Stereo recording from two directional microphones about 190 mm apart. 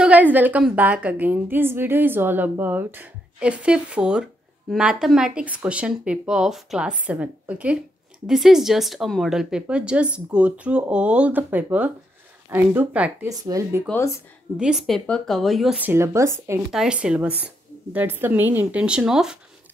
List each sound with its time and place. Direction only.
0.0 s a woman's voice: 10° right (ahead or behind)
13.8 s speech: 15° left (ahead or behind)
14.6 s speech: centre (ahead or behind)
16.7 s a woman's voice: 5° right (ahead or behind)